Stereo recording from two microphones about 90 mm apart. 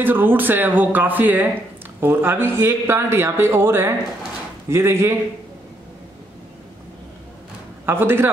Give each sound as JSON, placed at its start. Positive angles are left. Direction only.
{"t": 0.0, "sound": "speech", "side_deg": -20}
{"t": 7.8, "sound": "speech", "side_deg": -25}